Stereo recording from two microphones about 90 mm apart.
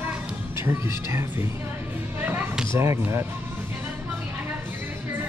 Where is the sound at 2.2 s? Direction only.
25° right (ahead or behind).